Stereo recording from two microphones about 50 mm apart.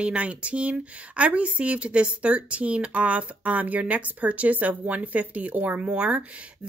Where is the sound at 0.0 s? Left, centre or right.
Right.